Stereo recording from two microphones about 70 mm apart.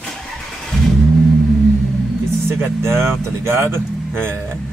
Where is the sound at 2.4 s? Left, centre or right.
Right.